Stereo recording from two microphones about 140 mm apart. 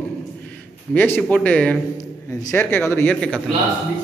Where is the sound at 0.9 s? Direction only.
15° left (ahead or behind).